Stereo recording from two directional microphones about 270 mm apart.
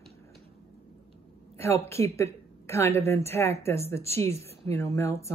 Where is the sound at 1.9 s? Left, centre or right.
Centre.